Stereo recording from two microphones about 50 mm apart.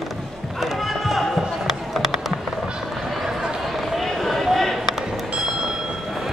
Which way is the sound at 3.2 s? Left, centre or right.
Centre.